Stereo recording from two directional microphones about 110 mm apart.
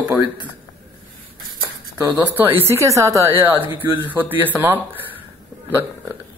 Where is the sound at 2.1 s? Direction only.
15° right (ahead or behind).